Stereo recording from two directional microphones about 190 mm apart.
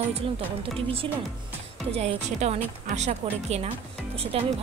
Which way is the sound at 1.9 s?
35° right (ahead or behind).